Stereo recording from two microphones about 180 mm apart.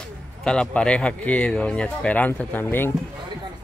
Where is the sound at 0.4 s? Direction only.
5° left (ahead or behind).